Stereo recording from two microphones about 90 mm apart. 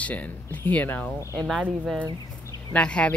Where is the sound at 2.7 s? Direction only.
15° left (ahead or behind).